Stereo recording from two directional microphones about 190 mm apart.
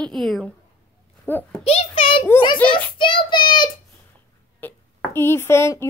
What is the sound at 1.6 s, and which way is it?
A child's voice, 30° left (ahead or behind).